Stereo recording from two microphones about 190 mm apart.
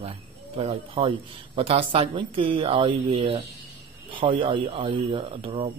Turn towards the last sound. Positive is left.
turn(degrees=-30)  # may be behind; listen again after turning